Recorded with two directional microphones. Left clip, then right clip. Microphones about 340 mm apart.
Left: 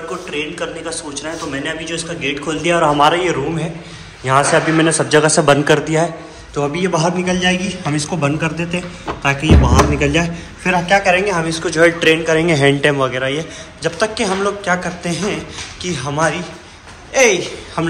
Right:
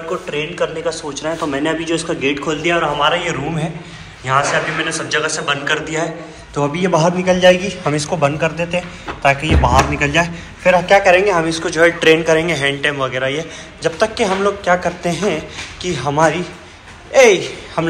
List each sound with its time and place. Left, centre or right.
0.3 s a man's voice: centre